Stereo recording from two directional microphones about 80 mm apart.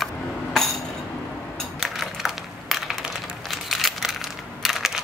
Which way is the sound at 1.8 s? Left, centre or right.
Centre.